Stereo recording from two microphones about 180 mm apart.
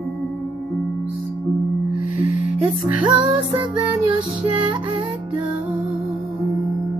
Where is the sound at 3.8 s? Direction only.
25° right (ahead or behind).